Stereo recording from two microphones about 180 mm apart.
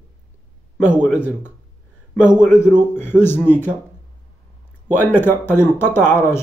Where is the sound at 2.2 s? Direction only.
5° right (ahead or behind).